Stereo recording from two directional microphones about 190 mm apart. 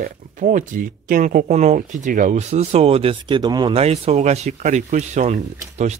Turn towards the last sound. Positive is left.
turn(degrees=-35)  # may be behind; listen again after turning